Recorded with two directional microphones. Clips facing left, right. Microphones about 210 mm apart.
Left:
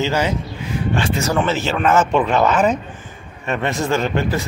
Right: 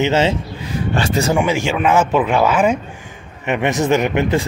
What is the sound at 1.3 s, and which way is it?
Speech, 10° right (ahead or behind).